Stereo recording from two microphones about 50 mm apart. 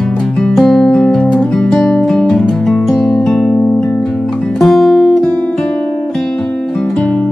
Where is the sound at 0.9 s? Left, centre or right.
Centre.